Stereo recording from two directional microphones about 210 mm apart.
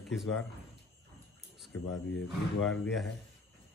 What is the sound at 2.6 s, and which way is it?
Speech, centre (ahead or behind).